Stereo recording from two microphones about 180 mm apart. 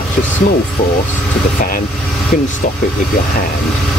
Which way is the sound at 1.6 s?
50° left (ahead or behind).